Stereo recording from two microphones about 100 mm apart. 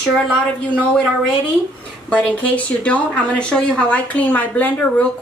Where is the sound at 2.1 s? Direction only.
15° left (ahead or behind).